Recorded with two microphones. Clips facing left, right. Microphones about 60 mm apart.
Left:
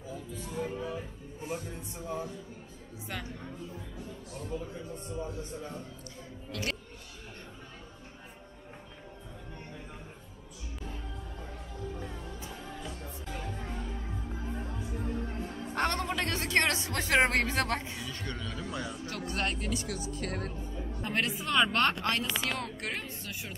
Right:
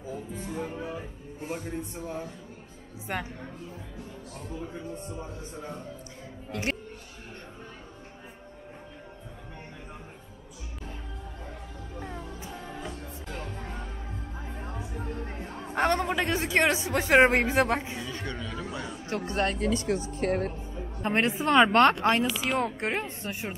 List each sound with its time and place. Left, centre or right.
0.1 s speech: right
1.5 s speech: right
6.5 s speech: right
12.2 s music: centre
13.3 s music: centre
14.4 s music: right
14.8 s music: centre
15.6 s a man's voice: centre
18.5 s chatter: centre
19.0 s speech: right